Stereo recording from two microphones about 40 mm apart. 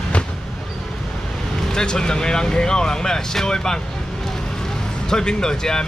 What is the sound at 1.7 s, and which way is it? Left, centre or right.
Speech, centre.